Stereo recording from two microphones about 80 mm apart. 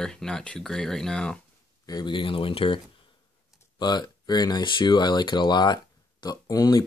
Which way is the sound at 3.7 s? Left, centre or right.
Left.